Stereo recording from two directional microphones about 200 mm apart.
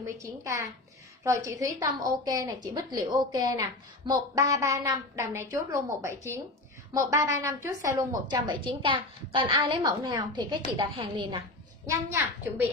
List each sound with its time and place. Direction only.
0.0 s a woman's voice: 15° right (ahead or behind)
8.6 s a woman's voice: 25° right (ahead or behind)
11.8 s a woman's voice: 15° right (ahead or behind)